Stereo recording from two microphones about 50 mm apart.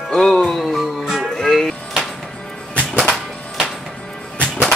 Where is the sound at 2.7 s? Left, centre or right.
Left.